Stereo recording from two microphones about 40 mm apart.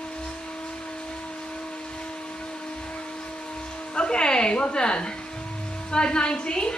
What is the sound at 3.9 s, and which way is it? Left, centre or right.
A woman's voice, left.